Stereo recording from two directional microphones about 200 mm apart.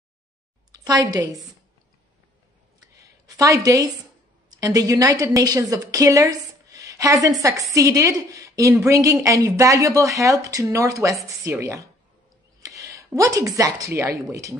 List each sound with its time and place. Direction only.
0.7 s a woman's voice: 20° right (ahead or behind)
2.9 s a sound: 15° right (ahead or behind)
4.6 s a woman's voice: 15° right (ahead or behind)